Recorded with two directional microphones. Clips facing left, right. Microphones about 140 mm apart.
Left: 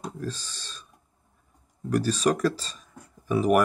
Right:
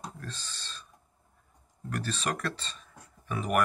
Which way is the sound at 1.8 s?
10° left (ahead or behind).